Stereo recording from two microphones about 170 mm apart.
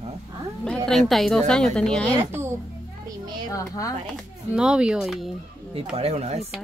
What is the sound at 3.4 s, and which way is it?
Speech, 20° left (ahead or behind).